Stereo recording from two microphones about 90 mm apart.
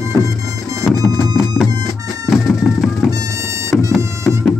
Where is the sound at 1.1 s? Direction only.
30° left (ahead or behind).